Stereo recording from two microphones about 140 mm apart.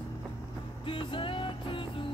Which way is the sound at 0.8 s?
35° left (ahead or behind).